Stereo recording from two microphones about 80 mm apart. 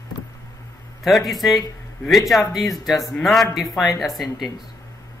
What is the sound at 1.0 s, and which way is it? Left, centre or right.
Speech, centre.